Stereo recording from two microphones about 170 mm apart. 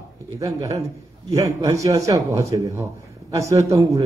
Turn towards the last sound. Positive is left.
turn(degrees=-20)  # may be behind; listen again after turning